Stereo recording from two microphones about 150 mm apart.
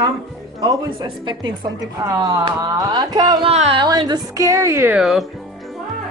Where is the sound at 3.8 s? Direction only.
30° right (ahead or behind).